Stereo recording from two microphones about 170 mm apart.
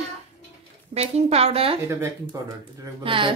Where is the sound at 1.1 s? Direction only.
35° right (ahead or behind).